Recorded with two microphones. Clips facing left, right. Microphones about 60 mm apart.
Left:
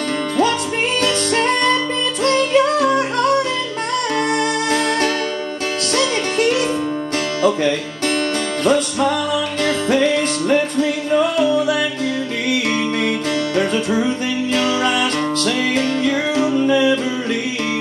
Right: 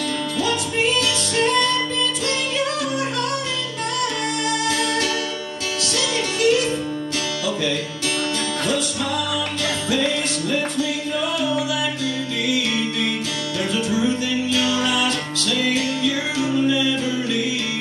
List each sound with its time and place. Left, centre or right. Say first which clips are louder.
1.0 s music: left 4 dB; left
5.9 s music: left 6 dB; left
8.6 s music: left 11 dB; left
13.6 s music: left 2 dB; left